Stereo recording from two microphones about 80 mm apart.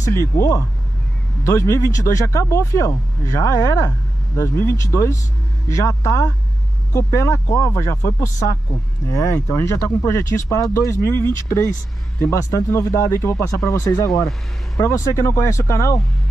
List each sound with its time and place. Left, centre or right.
0.0 s speech: left